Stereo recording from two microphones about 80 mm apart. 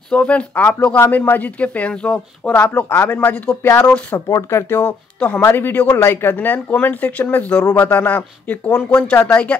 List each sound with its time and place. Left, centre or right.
0.1 s speech: centre
2.6 s speech: left
3.6 s speech: left